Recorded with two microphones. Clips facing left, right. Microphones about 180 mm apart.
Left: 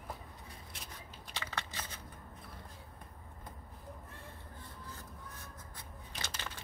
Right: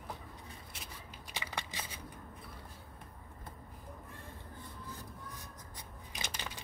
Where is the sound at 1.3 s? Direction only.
15° right (ahead or behind).